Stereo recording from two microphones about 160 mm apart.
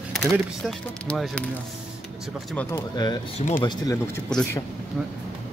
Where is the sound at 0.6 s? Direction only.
Centre (ahead or behind).